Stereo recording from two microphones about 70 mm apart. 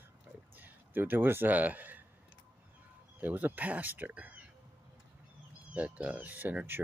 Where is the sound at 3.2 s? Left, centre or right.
Right.